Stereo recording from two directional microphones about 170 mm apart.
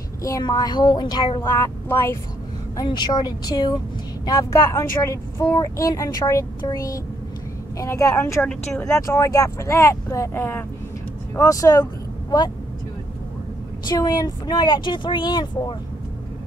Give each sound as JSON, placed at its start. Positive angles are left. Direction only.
{"t": 0.2, "sound": "speech", "side_deg": 20}
{"t": 1.5, "sound": "speech", "side_deg": 15}
{"t": 2.8, "sound": "speech", "side_deg": 25}
{"t": 13.8, "sound": "speech", "side_deg": 25}